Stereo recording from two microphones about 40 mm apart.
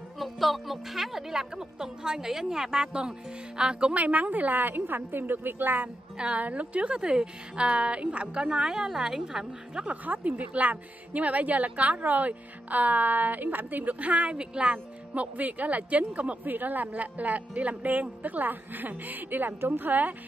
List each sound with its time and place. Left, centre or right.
0.2 s a woman's voice: centre; by 3.9 s right
3.9 s a woman's voice: right
6.1 s a woman's voice: right
8.5 s a woman's voice: centre
9.8 s speech: right
15.3 s speech: right
16.4 s speech: right